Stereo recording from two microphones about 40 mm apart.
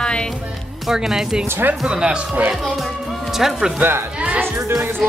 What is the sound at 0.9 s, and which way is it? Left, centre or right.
Speech, centre.